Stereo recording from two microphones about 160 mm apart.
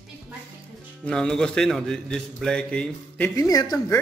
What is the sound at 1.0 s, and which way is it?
A man's voice, 5° left (ahead or behind).